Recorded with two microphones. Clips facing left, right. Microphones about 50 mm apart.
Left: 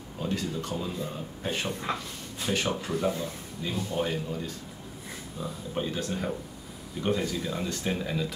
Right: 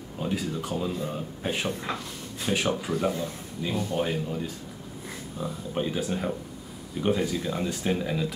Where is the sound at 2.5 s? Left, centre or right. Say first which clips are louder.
Right 2 dB; centre.